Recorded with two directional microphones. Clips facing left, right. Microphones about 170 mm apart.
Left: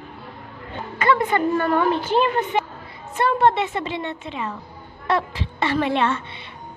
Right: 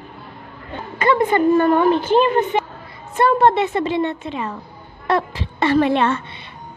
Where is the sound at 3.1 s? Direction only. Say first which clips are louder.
Right 4 dB; 40° right (ahead or behind).